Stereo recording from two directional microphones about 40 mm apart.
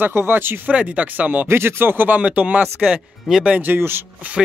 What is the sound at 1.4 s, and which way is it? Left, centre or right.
Speech, right.